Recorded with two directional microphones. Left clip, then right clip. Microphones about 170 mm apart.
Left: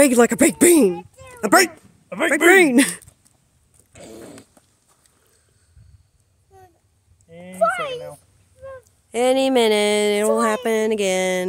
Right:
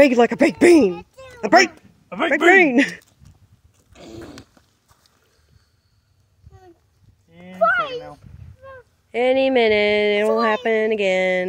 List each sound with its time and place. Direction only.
0.1 s speech: 25° left (ahead or behind)
0.9 s a sound: 5° right (ahead or behind)
1.4 s speech: 25° left (ahead or behind)
3.9 s dog: 20° left (ahead or behind)
7.2 s clip-clop: 60° left (ahead or behind)
7.6 s speech: 25° left (ahead or behind)